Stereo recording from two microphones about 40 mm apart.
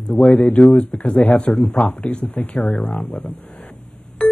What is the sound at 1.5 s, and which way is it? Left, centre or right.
Speech, left.